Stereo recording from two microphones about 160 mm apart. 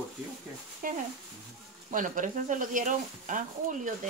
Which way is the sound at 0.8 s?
60° right (ahead or behind).